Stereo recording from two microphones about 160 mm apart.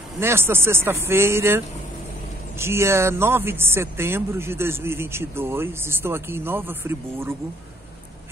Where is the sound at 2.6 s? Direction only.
15° right (ahead or behind).